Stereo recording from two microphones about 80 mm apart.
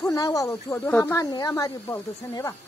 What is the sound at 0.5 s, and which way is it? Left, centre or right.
Speech, left.